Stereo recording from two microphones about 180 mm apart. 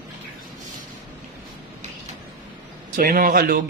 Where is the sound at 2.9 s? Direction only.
50° right (ahead or behind).